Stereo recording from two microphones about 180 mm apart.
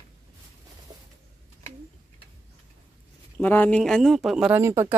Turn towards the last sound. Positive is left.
turn(degrees=-15)  # may be behind; listen again after turning